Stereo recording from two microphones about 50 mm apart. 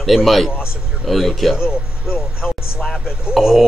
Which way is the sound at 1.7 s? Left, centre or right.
Centre.